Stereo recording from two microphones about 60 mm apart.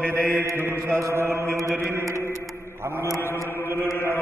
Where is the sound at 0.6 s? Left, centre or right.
Right.